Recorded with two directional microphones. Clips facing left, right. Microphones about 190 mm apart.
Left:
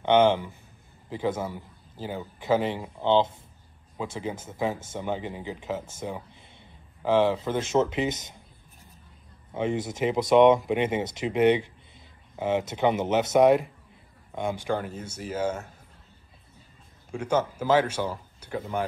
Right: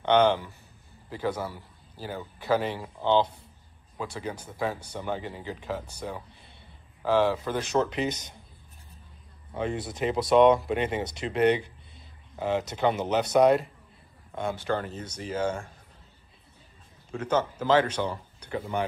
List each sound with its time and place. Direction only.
0.0 s speech: 15° left (ahead or behind)
9.5 s speech: 20° left (ahead or behind)
17.1 s speech: 10° left (ahead or behind)